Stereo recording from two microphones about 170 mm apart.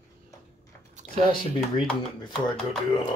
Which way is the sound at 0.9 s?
45° right (ahead or behind).